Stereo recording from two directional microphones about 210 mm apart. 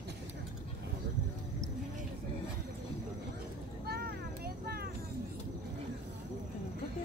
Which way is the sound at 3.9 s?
45° right (ahead or behind).